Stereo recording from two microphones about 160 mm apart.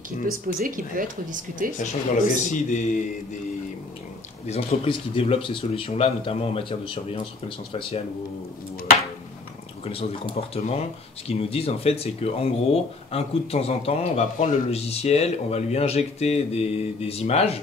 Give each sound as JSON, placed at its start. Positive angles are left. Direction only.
{"t": 0.3, "sound": "speech", "side_deg": -60}
{"t": 1.8, "sound": "speech", "side_deg": 55}
{"t": 4.5, "sound": "speech", "side_deg": 40}
{"t": 9.8, "sound": "speech", "side_deg": 35}